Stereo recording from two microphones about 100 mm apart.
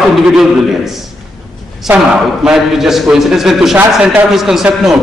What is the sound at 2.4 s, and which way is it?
A man's voice, 5° right (ahead or behind).